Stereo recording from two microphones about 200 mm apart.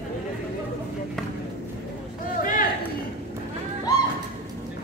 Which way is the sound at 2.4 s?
40° left (ahead or behind).